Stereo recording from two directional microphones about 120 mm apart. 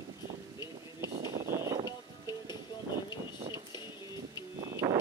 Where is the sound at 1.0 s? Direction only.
25° right (ahead or behind).